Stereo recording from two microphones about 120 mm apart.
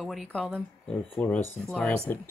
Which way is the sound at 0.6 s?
10° left (ahead or behind).